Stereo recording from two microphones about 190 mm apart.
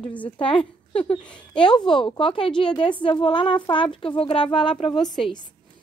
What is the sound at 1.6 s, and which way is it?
Speech, 25° left (ahead or behind).